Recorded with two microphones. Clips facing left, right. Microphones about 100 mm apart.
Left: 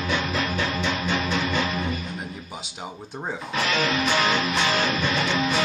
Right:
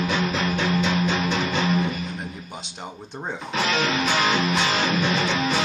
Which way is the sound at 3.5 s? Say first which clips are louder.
Right 1 dB; 30° right (ahead or behind).